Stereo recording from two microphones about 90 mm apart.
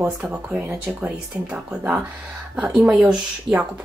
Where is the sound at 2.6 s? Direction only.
5° right (ahead or behind).